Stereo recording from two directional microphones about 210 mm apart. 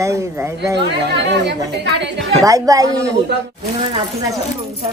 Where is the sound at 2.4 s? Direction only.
15° right (ahead or behind).